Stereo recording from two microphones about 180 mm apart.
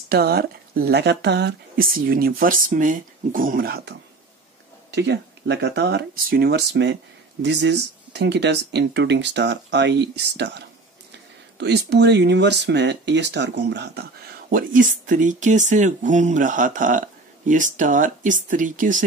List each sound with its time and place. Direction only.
0.1 s speech: 60° right (ahead or behind)
14.5 s speech: 50° right (ahead or behind)